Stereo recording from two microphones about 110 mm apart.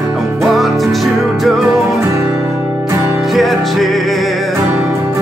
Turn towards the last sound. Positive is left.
turn(degrees=0)  # may be behind; listen again after turning